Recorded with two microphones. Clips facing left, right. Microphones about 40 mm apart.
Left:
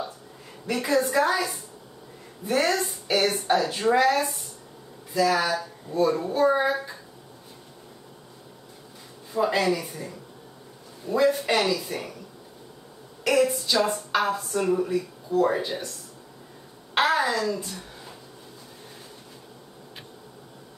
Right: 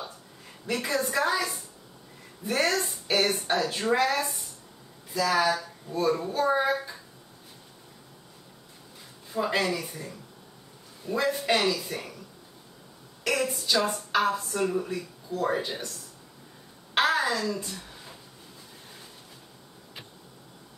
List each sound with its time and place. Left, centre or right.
0.7 s a woman's voice: centre
9.3 s a woman's voice: centre
13.2 s a woman's voice: centre
16.9 s a sound: centre